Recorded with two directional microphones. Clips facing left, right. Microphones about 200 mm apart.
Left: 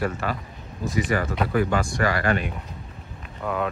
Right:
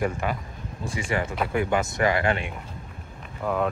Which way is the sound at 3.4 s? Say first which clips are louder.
Right 1 dB; centre (ahead or behind).